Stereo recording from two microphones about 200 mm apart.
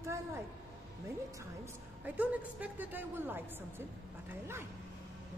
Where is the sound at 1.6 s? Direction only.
10° right (ahead or behind).